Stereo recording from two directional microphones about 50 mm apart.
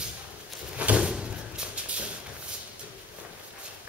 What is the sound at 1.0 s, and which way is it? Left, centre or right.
Thump, centre.